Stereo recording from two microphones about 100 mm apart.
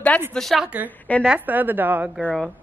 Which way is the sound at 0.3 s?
Centre (ahead or behind).